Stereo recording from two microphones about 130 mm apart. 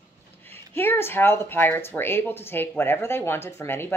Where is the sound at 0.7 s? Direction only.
15° left (ahead or behind).